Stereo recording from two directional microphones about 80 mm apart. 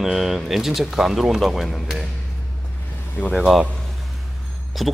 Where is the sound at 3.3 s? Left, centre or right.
Centre.